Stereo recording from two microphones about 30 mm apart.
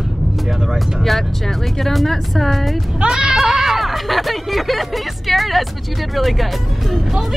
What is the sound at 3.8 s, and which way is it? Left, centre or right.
Speech, centre.